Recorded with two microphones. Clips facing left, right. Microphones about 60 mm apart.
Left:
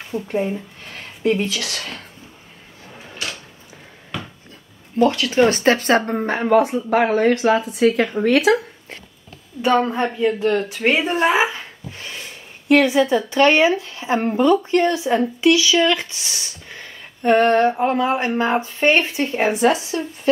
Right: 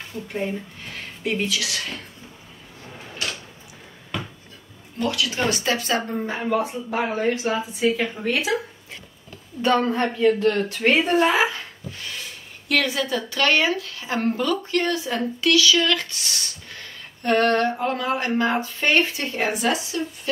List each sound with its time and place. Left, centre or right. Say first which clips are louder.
0.1 s speech: left 9 dB; left
1.5 s speech: even; left
4.9 s speech: left 8 dB; left
9.6 s a woman's voice: left 2 dB; centre; by 20.0 s left